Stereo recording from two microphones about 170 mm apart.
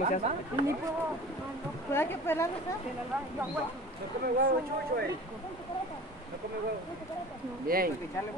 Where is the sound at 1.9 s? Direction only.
15° left (ahead or behind).